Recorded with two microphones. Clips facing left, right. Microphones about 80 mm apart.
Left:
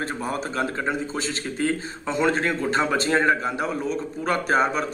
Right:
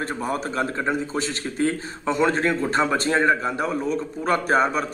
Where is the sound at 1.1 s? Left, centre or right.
Right.